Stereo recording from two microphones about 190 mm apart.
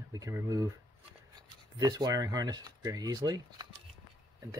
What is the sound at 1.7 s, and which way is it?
Speech, 20° right (ahead or behind).